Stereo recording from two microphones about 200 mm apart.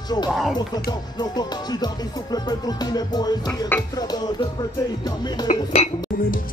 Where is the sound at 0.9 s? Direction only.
20° left (ahead or behind).